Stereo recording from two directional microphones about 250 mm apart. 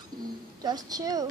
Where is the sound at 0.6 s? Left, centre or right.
Centre.